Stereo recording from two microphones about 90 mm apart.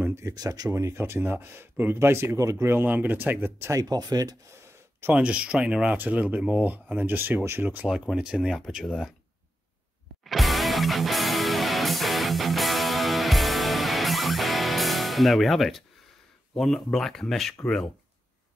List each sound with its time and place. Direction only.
0.3 s speech: 45° right (ahead or behind); by 3.8 s 25° right (ahead or behind)
3.9 s speech: 45° right (ahead or behind)
5.1 s speech: 10° right (ahead or behind)
7.9 s speech: 5° right (ahead or behind)
10.2 s music: centre (ahead or behind)
16.5 s speech: 5° left (ahead or behind)